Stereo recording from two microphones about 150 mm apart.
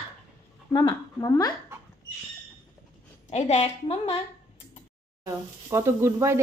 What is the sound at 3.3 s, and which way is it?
Speech, 45° left (ahead or behind).